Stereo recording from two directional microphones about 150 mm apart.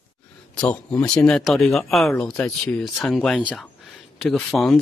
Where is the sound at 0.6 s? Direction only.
5° left (ahead or behind).